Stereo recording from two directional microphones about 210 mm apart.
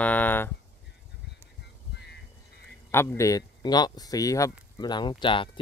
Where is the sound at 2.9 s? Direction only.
10° left (ahead or behind).